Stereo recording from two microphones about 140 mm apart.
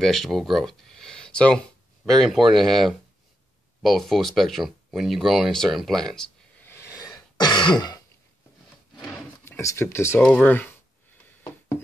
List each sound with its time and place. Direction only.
0.0 s speech: centre (ahead or behind)
6.6 s throat clearing: 20° left (ahead or behind)
9.4 s speech: 20° left (ahead or behind)